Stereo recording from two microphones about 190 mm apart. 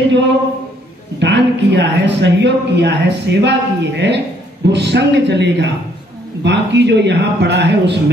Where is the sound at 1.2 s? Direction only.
70° right (ahead or behind).